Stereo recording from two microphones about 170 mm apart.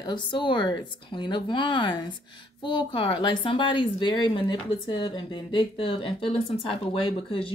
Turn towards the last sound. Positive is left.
turn(degrees=30)  # may be behind; listen again after turning